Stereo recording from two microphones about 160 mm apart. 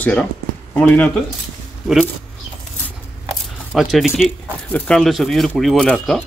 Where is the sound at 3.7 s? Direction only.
Centre (ahead or behind).